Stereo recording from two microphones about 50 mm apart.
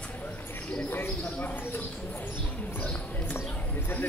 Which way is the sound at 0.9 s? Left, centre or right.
Left.